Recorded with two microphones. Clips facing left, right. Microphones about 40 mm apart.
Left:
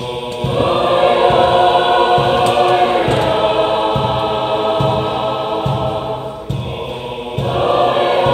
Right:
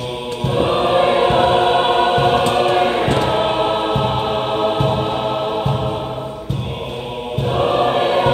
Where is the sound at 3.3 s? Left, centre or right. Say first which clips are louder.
Left 3 dB; centre.